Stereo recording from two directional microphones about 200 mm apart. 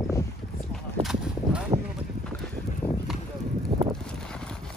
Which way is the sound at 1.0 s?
5° right (ahead or behind).